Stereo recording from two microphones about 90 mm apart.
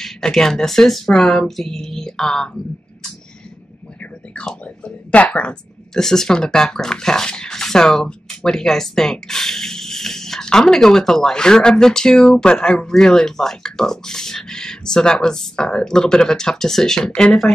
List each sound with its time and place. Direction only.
0.0 s speech: 5° left (ahead or behind)
4.4 s speech: 10° left (ahead or behind)